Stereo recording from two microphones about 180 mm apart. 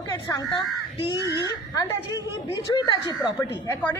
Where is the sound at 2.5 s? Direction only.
25° left (ahead or behind).